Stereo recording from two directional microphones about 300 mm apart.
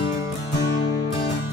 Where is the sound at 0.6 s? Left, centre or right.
Centre.